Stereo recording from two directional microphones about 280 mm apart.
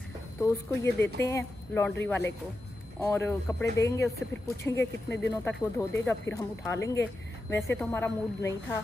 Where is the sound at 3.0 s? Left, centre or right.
Centre.